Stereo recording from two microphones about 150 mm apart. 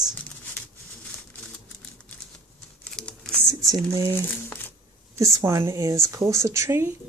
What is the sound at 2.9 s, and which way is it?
Crumpling, 5° left (ahead or behind).